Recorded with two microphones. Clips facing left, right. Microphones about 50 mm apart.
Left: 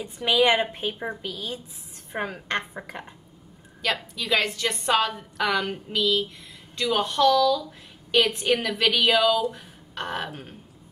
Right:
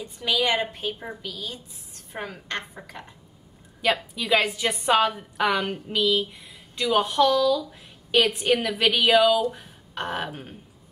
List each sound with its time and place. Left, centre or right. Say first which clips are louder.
0.0 s a woman's voice: left 4 dB; left
3.8 s a woman's voice: right 3 dB; centre